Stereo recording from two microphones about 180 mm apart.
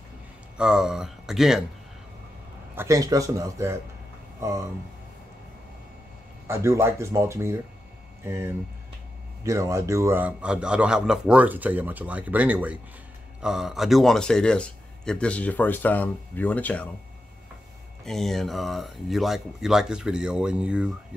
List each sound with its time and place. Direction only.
0.6 s speech: 5° right (ahead or behind)
2.7 s a man's voice: 15° right (ahead or behind)
6.4 s a man's voice: 15° right (ahead or behind)
9.4 s a man's voice: 15° right (ahead or behind); by 16.9 s 10° left (ahead or behind)
18.0 s speech: centre (ahead or behind)